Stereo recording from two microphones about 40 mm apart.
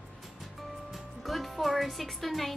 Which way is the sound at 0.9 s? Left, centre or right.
Centre.